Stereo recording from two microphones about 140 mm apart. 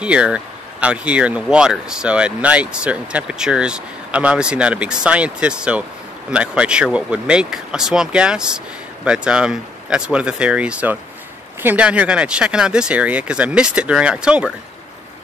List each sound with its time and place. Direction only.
0.0 s speech: 10° right (ahead or behind)